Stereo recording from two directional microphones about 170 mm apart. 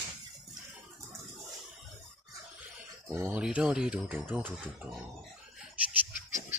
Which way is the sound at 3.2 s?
10° right (ahead or behind).